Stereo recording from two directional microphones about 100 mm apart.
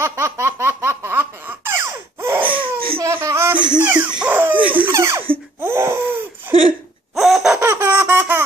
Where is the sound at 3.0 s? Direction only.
25° right (ahead or behind).